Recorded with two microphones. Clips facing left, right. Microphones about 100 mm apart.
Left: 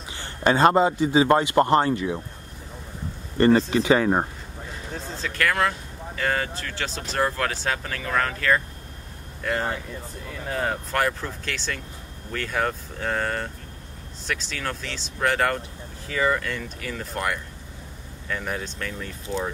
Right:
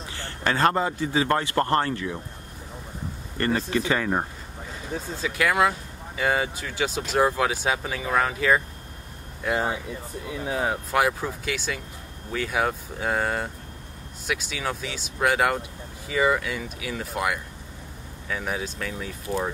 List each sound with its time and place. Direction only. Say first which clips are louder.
0.1 s a man's voice: left 5 dB; 20° left (ahead or behind)
3.3 s a man's voice: left 7 dB; 25° left (ahead or behind)
4.9 s speech: right 2 dB; 5° right (ahead or behind)